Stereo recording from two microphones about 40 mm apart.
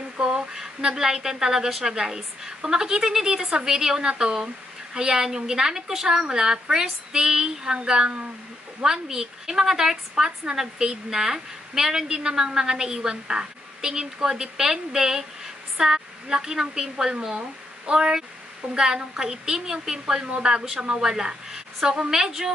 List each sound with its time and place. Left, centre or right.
0.2 s a woman's voice: centre
8.8 s a woman's voice: centre